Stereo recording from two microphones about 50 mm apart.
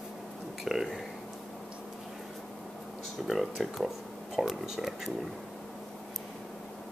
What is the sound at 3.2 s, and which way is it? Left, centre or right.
Speech, centre.